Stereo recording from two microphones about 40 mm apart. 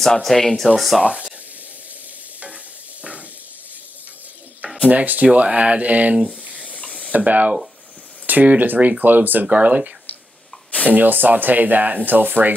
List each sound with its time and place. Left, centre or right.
0.0 s speech: centre
4.8 s speech: right
6.2 s a sound: right
6.8 s spray: left
7.1 s speech: right
9.5 s speech: right
10.9 s speech: right